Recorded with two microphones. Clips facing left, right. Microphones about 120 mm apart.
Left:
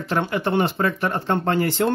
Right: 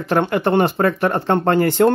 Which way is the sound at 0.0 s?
55° right (ahead or behind).